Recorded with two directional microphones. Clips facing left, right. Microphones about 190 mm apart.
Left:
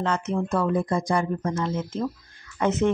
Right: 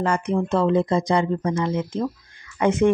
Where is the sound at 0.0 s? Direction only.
10° right (ahead or behind).